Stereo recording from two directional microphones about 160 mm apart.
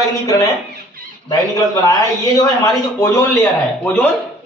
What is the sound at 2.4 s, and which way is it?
Speech, 20° left (ahead or behind).